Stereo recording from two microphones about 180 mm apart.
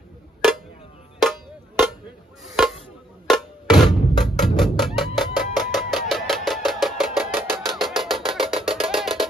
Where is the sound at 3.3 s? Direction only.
Centre (ahead or behind).